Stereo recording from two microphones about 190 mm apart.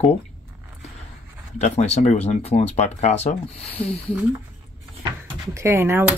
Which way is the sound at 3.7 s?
5° left (ahead or behind).